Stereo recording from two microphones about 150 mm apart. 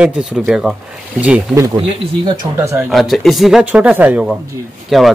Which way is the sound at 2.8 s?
Centre (ahead or behind).